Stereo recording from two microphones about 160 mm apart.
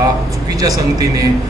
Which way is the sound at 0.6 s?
20° right (ahead or behind).